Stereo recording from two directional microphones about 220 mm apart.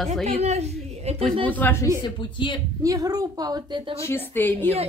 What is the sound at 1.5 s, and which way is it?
Speech, 10° left (ahead or behind).